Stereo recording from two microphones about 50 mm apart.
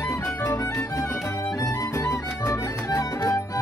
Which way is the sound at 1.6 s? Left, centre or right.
Left.